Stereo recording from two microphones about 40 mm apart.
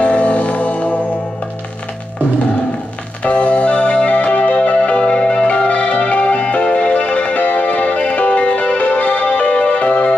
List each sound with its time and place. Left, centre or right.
0.0 s music: left
3.3 s music: left